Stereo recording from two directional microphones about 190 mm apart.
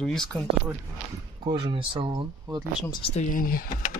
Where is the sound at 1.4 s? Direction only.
25° right (ahead or behind).